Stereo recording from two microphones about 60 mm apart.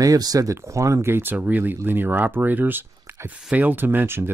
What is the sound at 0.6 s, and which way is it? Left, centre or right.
Speech, right.